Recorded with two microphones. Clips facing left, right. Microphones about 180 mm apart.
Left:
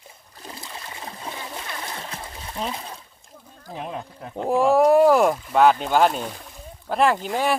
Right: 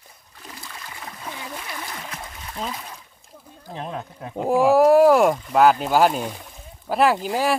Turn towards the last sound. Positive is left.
turn(degrees=-5)  # may be behind; listen again after turning